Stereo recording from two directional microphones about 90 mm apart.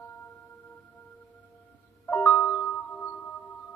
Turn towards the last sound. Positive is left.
turn(degrees=15)  # may be behind; listen again after turning